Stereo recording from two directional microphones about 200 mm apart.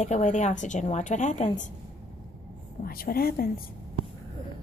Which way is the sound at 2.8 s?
50° left (ahead or behind).